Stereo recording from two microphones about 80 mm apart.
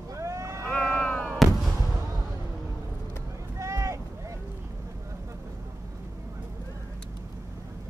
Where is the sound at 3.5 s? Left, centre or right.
Right.